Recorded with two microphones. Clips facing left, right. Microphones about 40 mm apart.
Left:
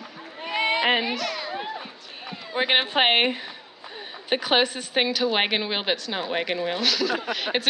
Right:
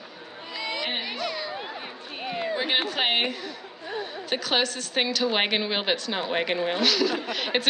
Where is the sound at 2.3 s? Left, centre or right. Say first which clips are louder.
Right 10 dB; right.